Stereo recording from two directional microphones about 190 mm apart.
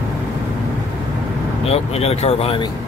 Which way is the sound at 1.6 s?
35° left (ahead or behind).